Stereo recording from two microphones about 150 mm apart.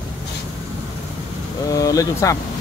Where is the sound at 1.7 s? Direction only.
25° left (ahead or behind).